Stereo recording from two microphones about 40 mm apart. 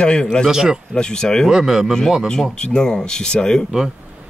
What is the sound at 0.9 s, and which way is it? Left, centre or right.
Speech, centre.